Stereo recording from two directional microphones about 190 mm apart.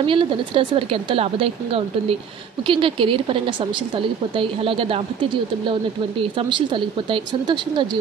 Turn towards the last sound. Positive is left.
turn(degrees=-25)  # may be behind; listen again after turning